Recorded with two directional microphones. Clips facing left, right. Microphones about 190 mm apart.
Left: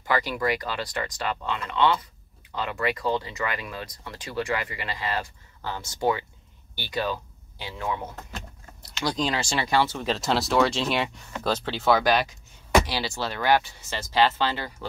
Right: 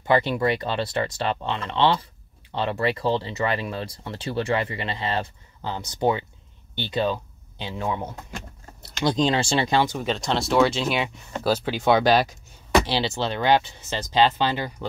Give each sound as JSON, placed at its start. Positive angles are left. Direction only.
{"t": 0.0, "sound": "speech", "side_deg": -25}
{"t": 10.0, "sound": "speech", "side_deg": 0}
{"t": 11.9, "sound": "speech", "side_deg": -30}